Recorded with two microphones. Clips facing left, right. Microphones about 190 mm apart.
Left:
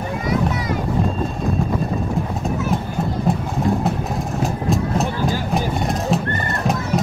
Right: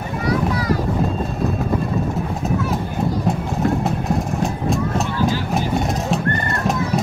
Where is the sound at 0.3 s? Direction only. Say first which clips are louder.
Right 2 dB; 20° left (ahead or behind).